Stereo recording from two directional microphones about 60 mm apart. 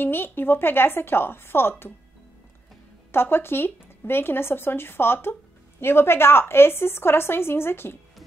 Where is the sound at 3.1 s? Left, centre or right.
Left.